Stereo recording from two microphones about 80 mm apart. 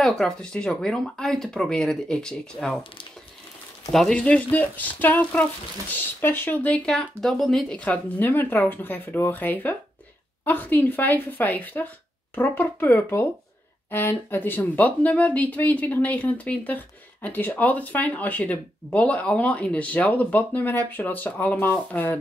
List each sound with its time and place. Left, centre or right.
0.0 s speech: centre
4.1 s speech: centre
6.9 s speech: centre
7.7 s speech: centre